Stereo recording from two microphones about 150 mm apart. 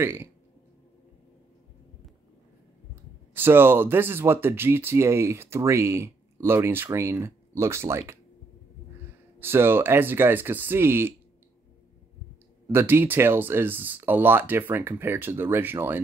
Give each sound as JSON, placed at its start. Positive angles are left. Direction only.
{"t": 0.0, "sound": "speech", "side_deg": -15}
{"t": 3.3, "sound": "speech", "side_deg": -15}
{"t": 9.4, "sound": "speech", "side_deg": -15}
{"t": 12.7, "sound": "speech", "side_deg": -15}